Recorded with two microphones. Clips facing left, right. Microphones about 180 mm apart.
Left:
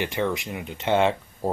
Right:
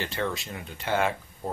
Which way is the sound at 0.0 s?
15° left (ahead or behind).